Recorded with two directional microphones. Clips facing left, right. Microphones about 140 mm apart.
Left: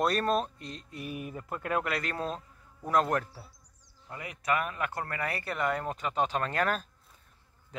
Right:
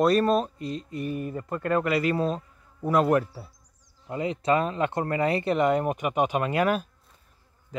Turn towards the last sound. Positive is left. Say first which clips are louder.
# right 6 dB
turn(degrees=-10)  # may be behind; listen again after turning